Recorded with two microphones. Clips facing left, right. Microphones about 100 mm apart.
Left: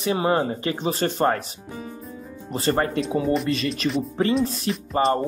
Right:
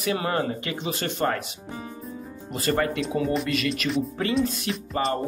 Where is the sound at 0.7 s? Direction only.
35° left (ahead or behind).